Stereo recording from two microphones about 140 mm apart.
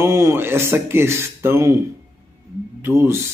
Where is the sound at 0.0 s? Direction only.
20° right (ahead or behind).